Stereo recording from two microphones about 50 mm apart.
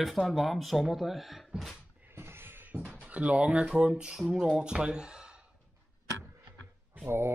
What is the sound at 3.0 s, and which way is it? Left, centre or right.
Speech, right.